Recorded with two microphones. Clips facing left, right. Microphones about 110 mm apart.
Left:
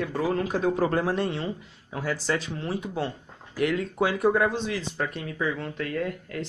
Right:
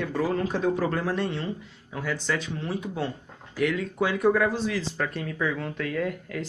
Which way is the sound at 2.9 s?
Centre (ahead or behind).